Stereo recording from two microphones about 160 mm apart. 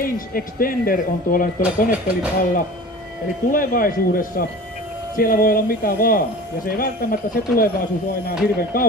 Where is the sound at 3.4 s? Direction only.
60° left (ahead or behind).